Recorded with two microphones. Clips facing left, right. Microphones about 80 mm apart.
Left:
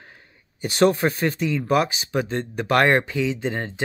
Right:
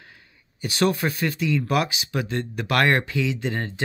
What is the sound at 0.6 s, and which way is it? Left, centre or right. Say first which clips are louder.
Speech: left 4 dB; left.